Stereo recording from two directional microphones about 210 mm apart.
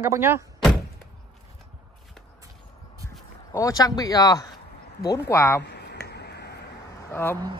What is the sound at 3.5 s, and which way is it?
Speech, 15° left (ahead or behind).